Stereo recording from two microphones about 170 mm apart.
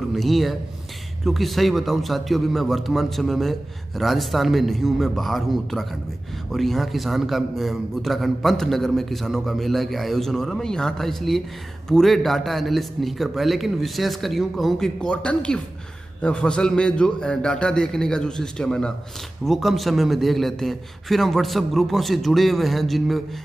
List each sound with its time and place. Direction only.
0.1 s a man's voice: centre (ahead or behind)